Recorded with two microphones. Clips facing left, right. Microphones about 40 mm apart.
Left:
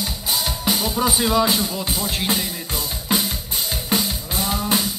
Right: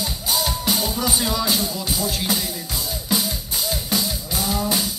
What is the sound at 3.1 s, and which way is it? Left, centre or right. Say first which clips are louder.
Drum: left 1 dB; left.